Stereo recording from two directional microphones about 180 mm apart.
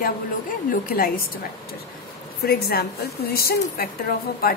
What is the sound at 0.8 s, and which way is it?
Speech, 55° left (ahead or behind).